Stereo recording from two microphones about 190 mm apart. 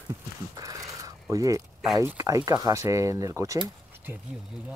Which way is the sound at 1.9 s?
15° right (ahead or behind).